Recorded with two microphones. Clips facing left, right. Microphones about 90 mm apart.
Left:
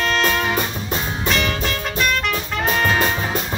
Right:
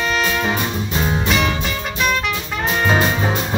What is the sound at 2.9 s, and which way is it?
Music, 25° right (ahead or behind).